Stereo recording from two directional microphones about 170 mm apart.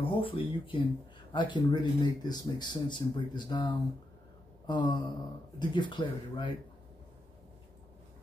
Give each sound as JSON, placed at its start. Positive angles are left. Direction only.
{"t": 0.0, "sound": "speech", "side_deg": 30}